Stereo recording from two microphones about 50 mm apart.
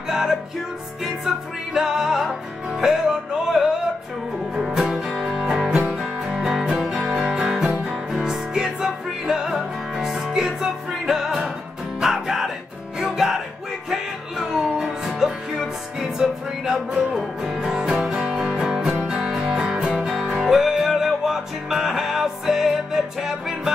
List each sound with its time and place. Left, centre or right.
0.1 s music: centre
7.1 s music: centre
7.3 s music: centre
14.4 s music: centre